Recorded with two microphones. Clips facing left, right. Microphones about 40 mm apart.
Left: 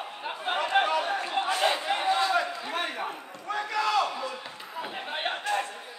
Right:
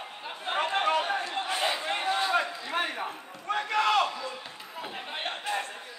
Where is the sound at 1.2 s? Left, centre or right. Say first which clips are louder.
Left 3 dB; centre.